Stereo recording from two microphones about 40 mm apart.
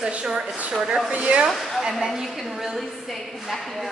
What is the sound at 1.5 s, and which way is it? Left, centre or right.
A woman's voice, centre.